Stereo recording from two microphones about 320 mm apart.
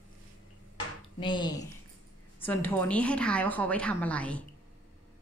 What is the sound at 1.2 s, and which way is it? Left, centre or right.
A woman's voice, centre.